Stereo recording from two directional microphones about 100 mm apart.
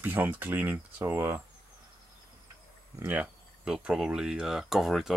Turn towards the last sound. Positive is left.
turn(degrees=0)  # may be behind; listen again after turning